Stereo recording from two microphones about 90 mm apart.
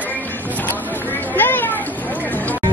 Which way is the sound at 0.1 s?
20° left (ahead or behind).